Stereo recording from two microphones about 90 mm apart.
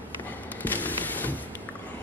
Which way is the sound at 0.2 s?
20° left (ahead or behind).